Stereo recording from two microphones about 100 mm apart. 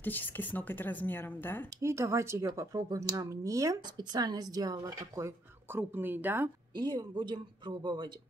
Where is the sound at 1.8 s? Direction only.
30° right (ahead or behind).